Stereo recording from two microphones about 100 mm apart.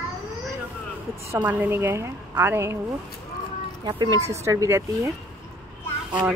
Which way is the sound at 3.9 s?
45° right (ahead or behind).